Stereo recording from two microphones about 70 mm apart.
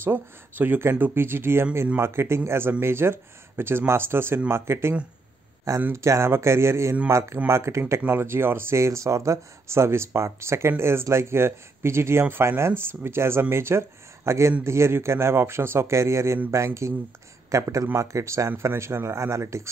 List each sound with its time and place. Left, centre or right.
0.0 s speech: right
5.9 s speech: right